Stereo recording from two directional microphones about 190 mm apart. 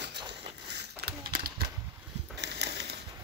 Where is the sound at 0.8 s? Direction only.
55° right (ahead or behind).